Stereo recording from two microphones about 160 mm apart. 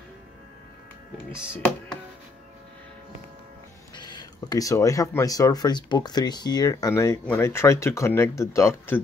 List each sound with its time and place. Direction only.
3.9 s speech: 25° left (ahead or behind)